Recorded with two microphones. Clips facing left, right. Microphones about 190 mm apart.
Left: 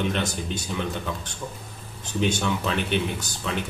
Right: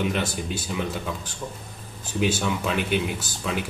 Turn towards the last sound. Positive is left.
turn(degrees=-5)  # may be behind; listen again after turning